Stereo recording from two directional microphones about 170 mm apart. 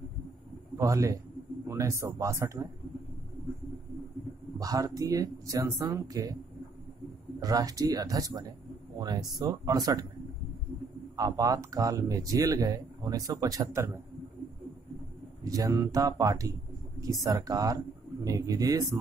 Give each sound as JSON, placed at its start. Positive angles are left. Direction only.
{"t": 0.7, "sound": "a man's voice", "side_deg": -20}
{"t": 4.6, "sound": "speech", "side_deg": -20}
{"t": 7.3, "sound": "speech", "side_deg": -20}
{"t": 11.1, "sound": "speech", "side_deg": -20}
{"t": 15.4, "sound": "speech", "side_deg": -20}